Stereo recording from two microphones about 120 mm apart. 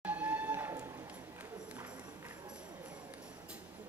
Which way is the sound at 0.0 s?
15° right (ahead or behind).